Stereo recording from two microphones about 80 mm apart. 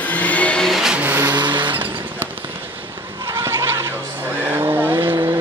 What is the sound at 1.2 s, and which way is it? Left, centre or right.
Vehicle, right.